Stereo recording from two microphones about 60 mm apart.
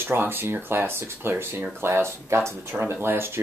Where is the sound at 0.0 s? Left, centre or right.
Right.